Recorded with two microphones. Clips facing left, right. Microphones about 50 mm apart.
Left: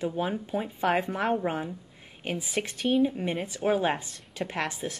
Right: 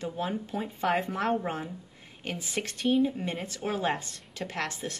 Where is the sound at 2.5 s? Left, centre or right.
Centre.